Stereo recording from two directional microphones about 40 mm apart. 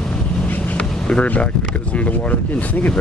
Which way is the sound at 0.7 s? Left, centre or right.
Left.